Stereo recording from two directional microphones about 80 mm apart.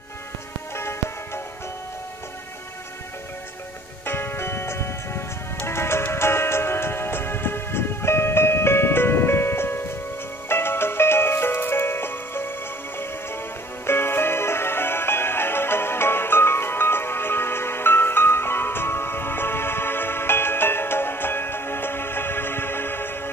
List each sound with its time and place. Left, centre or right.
0.7 s music: left
4.0 s music: left
13.8 s music: left